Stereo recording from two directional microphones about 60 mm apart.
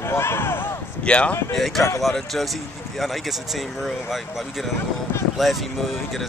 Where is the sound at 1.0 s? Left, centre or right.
Centre.